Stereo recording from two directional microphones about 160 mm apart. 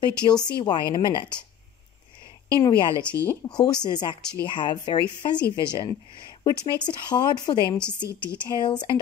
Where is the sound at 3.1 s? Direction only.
15° left (ahead or behind).